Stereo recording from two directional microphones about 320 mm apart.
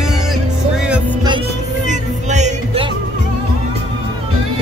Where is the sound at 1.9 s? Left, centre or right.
Right.